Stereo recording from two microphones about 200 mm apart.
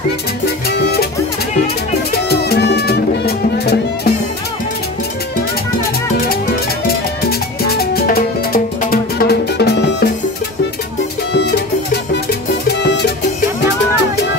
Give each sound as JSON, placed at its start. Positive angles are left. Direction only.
{"t": 0.7, "sound": "music", "side_deg": 55}
{"t": 2.2, "sound": "music", "side_deg": 55}
{"t": 6.9, "sound": "music", "side_deg": 50}
{"t": 12.6, "sound": "music", "side_deg": 60}